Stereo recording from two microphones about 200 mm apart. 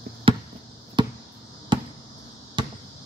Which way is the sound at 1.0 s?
25° right (ahead or behind).